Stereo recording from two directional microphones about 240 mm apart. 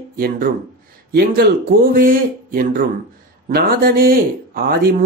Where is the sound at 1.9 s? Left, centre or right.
Right.